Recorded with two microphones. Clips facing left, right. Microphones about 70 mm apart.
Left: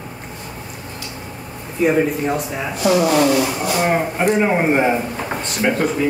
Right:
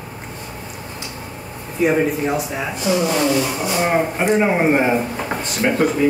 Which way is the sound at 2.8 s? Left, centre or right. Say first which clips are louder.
Left 4 dB; left.